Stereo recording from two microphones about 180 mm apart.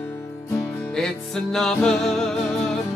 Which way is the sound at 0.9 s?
5° left (ahead or behind).